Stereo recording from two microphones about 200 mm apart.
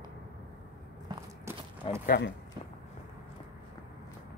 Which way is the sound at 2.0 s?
50° left (ahead or behind).